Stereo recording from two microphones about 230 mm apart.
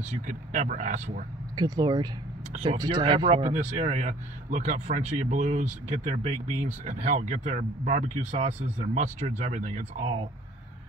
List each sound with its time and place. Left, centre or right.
0.1 s speech: right
1.6 s speech: centre
2.5 s a man's voice: right
2.8 s a man's voice: centre